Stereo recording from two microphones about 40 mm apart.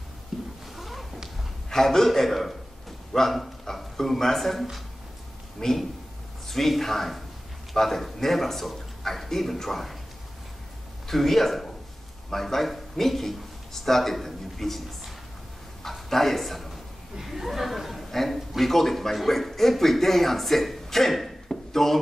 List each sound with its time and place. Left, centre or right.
0.3 s cat: centre
0.7 s a sound: centre
1.7 s speech: centre
5.6 s speech: centre
6.5 s a man's voice: centre
11.1 s a man's voice: centre
15.8 s a sound: centre
17.2 s a woman's voice: centre